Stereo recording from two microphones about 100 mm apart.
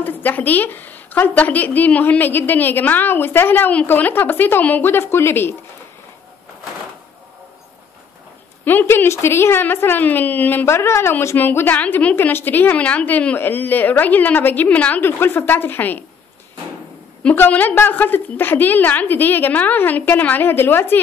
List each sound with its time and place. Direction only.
0.0 s a woman's voice: 20° left (ahead or behind)
8.6 s a woman's voice: 20° left (ahead or behind)
17.2 s a woman's voice: 15° left (ahead or behind)